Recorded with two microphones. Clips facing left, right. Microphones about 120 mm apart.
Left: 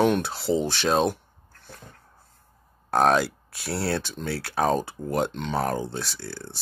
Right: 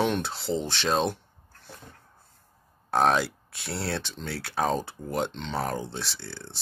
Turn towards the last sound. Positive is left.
turn(degrees=0)  # may be behind; listen again after turning